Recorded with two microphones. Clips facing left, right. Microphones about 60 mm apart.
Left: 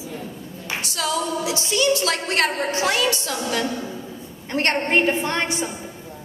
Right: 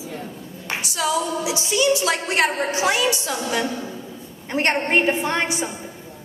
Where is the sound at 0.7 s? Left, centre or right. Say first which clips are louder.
Right 2 dB; centre.